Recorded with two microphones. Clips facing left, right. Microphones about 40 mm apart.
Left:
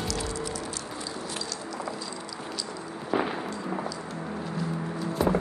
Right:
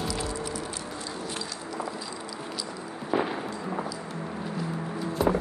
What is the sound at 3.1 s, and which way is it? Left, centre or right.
Explosion, centre.